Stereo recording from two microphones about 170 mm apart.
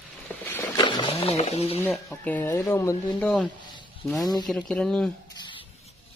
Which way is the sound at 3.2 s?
5° left (ahead or behind).